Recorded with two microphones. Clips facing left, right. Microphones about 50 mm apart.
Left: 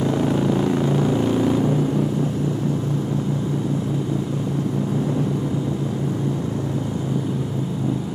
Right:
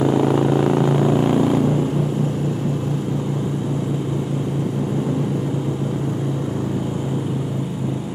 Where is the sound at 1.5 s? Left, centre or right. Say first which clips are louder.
Right 1 dB; centre.